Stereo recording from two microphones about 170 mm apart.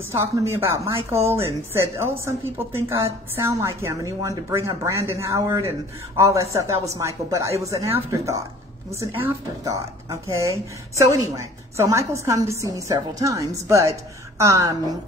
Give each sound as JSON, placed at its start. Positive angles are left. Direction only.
{"t": 0.1, "sound": "a woman's voice", "side_deg": -15}